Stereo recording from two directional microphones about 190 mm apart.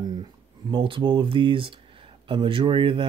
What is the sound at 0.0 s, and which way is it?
Speech, 25° right (ahead or behind).